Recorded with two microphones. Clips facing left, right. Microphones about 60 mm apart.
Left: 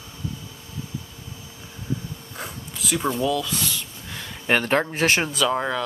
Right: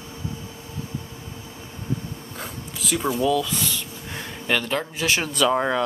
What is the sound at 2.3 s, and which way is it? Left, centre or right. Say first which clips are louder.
Speech: left 1 dB; centre.